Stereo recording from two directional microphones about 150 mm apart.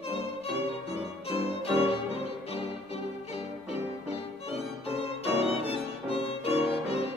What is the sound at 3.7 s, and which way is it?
Music, 45° left (ahead or behind).